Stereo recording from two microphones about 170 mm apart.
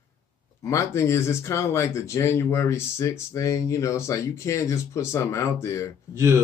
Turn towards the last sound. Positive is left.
turn(degrees=-15)  # may be behind; listen again after turning